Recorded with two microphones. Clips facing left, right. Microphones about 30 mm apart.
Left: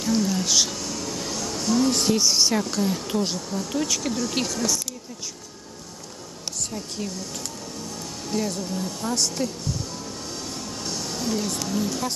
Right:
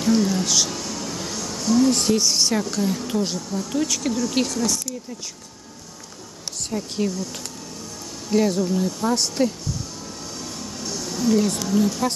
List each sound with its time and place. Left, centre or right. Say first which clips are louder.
0.0 s speech: right 4 dB; centre
0.5 s speech: even; centre
0.8 s vehicle: right 1 dB; centre
1.6 s speech: right 3 dB; centre
8.3 s speech: right 8 dB; centre
8.6 s speech: right 6 dB; centre
10.8 s music: right 2 dB; centre
11.1 s speech: right 8 dB; centre